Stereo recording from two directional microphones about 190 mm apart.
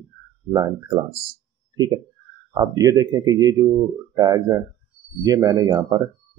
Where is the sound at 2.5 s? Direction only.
20° right (ahead or behind).